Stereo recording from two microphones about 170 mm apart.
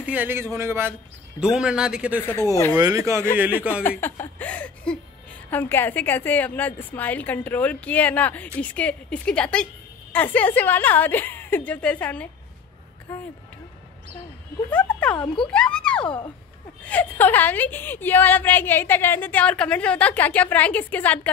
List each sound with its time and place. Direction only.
0.0 s a man's voice: 10° right (ahead or behind)
2.8 s speech: 20° right (ahead or behind)
4.0 s a woman's voice: 10° left (ahead or behind)
14.7 s a woman's voice: 10° left (ahead or behind)